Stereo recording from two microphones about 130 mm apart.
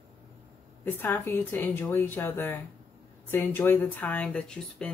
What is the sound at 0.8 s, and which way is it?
Speech, 15° left (ahead or behind).